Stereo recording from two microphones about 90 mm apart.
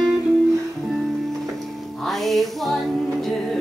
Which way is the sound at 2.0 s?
Centre (ahead or behind).